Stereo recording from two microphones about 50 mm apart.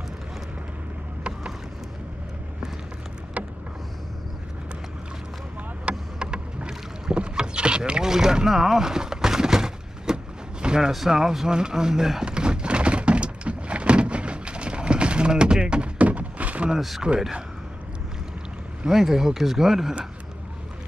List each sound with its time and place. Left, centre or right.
3.4 s vehicle: right
5.9 s rowboat: centre
10.9 s door: centre; by 16.7 s right
16.7 s speech: centre
18.9 s speech: centre